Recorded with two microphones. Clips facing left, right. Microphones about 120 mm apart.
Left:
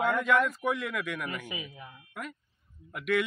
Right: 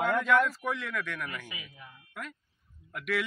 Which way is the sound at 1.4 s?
25° left (ahead or behind).